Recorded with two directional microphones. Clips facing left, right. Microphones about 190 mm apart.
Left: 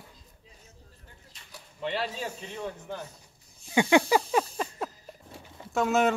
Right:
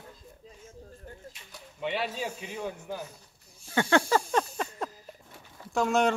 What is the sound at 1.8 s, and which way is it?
Speech, centre (ahead or behind).